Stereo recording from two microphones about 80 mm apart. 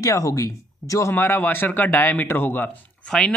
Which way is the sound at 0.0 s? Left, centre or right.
Left.